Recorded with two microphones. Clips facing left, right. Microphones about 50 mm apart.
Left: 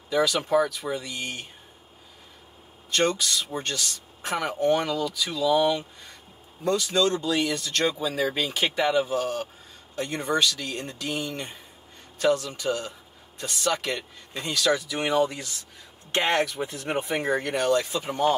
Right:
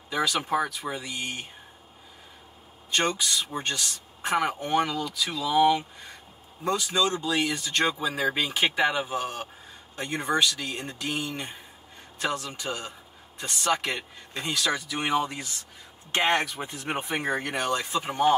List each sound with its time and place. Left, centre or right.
0.1 s speech: centre
2.9 s speech: centre
4.4 s speech: centre
5.1 s speech: centre
5.4 s speech: centre